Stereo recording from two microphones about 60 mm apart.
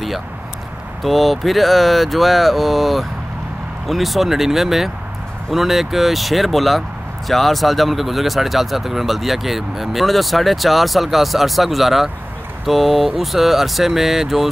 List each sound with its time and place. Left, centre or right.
1.0 s speech: centre